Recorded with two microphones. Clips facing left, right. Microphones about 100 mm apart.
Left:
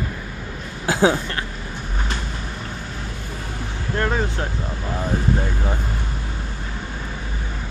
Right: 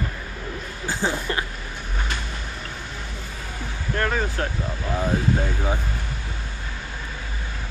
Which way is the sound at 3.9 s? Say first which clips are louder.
Left 2 dB; 25° left (ahead or behind).